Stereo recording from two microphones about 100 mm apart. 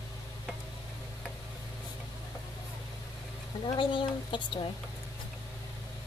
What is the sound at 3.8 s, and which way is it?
Speech, 55° left (ahead or behind).